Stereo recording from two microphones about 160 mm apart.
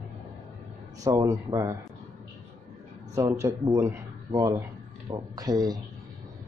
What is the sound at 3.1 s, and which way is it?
Speech, 20° right (ahead or behind).